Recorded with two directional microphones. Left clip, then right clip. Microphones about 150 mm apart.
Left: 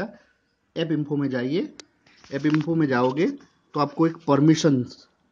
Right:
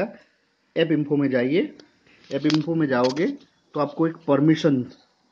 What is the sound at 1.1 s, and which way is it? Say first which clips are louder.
Speech: right 5 dB; 10° left (ahead or behind).